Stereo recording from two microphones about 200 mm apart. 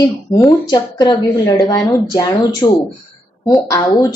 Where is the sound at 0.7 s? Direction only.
20° left (ahead or behind).